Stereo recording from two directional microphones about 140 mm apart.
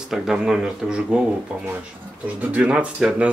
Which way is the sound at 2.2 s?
10° right (ahead or behind).